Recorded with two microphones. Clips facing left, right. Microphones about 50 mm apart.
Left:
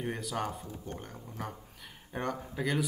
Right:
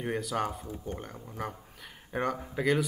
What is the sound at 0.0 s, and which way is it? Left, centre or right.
Speech, centre.